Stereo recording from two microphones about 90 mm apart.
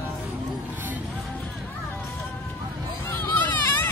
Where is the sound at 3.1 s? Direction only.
25° left (ahead or behind).